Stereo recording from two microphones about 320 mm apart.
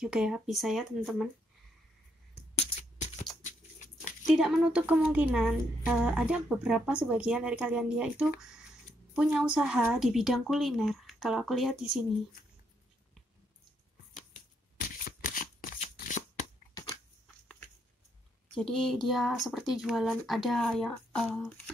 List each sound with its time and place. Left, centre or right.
0.0 s a woman's voice: centre
4.3 s a woman's voice: centre
15.0 s shuffling cards: left
18.5 s a woman's voice: centre